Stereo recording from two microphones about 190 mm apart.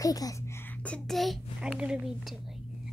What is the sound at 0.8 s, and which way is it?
A child's voice, 5° left (ahead or behind).